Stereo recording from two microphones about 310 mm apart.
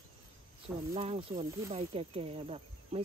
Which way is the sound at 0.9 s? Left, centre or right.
Centre.